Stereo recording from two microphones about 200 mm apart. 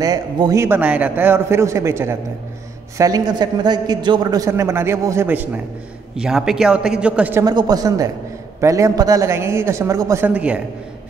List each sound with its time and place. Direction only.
0.0 s a man's voice: 20° right (ahead or behind)
7.4 s a man's voice: 20° right (ahead or behind)